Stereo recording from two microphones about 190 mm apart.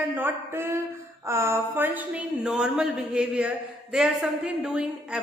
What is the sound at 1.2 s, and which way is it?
A woman's voice, 15° right (ahead or behind).